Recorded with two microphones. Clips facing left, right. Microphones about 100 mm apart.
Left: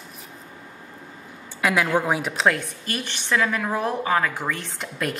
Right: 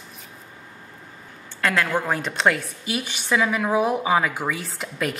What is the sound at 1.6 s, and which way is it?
A woman's voice, 10° left (ahead or behind).